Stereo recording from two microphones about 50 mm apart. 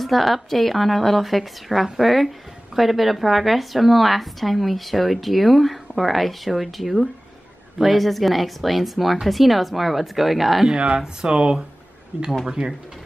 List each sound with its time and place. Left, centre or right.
0.0 s a woman's voice: centre
11.0 s speech: centre